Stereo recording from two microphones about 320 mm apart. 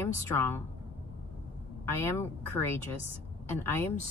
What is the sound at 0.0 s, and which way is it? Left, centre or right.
Speech, centre.